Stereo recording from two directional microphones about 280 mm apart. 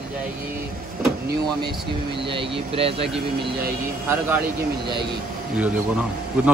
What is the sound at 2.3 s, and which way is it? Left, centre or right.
Speech, centre.